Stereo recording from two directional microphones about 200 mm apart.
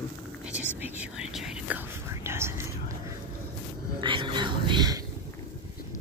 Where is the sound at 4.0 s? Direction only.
25° right (ahead or behind).